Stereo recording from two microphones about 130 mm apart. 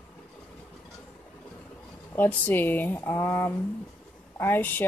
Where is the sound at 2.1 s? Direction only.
15° left (ahead or behind).